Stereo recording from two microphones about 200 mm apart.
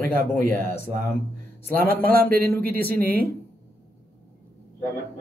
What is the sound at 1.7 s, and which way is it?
Speech, 10° left (ahead or behind).